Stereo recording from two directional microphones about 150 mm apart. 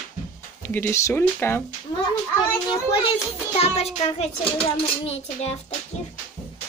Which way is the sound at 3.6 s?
45° left (ahead or behind).